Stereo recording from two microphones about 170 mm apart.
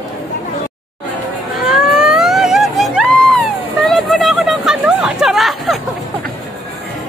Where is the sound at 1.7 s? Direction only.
5° right (ahead or behind).